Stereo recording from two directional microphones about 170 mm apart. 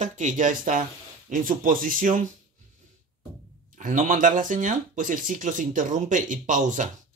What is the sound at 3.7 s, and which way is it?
Speech, 50° right (ahead or behind).